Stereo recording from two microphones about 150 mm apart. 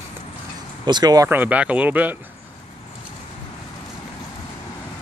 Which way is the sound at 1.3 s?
10° right (ahead or behind).